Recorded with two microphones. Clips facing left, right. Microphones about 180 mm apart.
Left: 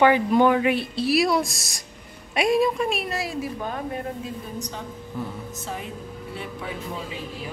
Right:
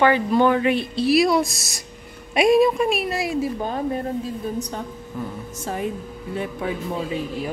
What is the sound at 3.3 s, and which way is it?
Speech, 30° right (ahead or behind).